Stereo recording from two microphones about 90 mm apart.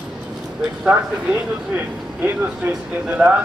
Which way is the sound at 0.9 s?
15° right (ahead or behind).